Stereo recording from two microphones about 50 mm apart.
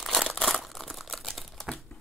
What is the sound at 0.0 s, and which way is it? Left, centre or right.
Crumpling, centre.